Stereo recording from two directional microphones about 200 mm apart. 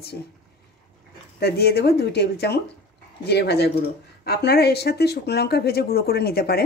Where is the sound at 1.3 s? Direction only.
55° left (ahead or behind).